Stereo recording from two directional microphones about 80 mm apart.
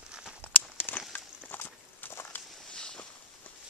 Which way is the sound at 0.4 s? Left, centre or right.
Left.